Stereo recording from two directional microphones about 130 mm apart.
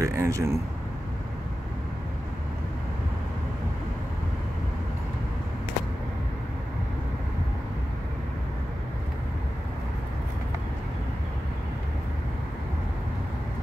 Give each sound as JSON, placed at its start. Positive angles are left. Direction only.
{"t": 0.0, "sound": "speech", "side_deg": -25}